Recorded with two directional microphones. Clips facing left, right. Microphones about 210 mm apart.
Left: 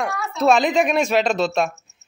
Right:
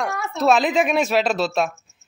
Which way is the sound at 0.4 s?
Centre (ahead or behind).